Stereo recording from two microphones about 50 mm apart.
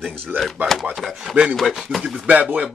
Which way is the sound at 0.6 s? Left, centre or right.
Right.